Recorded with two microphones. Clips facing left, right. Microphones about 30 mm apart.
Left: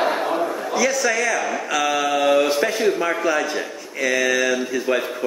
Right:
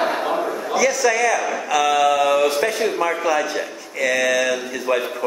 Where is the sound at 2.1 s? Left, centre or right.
Left.